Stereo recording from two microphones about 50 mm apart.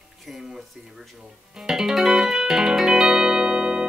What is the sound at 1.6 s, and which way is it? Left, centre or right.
Music, centre.